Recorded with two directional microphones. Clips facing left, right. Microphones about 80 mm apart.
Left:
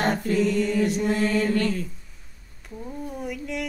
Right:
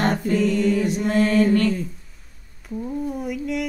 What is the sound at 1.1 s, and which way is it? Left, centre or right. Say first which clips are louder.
Mantra: right 5 dB; right.